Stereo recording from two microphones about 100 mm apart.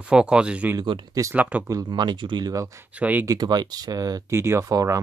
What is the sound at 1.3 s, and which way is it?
Speech, 15° right (ahead or behind).